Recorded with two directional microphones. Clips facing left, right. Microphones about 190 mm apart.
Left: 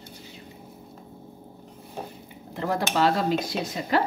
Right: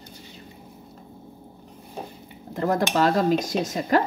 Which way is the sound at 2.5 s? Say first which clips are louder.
Right 3 dB; 45° right (ahead or behind).